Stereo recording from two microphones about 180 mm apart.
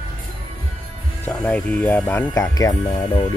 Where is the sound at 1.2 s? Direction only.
5° left (ahead or behind).